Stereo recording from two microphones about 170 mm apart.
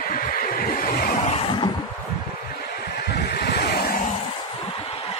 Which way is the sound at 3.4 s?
70° left (ahead or behind).